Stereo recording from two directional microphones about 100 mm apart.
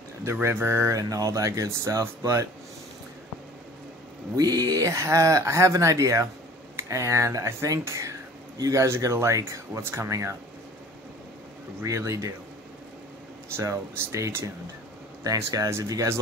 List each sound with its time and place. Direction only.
0.2 s speech: 25° right (ahead or behind)
4.4 s speech: 40° right (ahead or behind)
11.8 s speech: 30° right (ahead or behind)
13.6 s speech: 30° right (ahead or behind)